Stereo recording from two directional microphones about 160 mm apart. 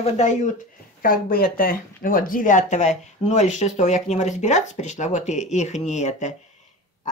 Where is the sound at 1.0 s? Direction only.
65° left (ahead or behind).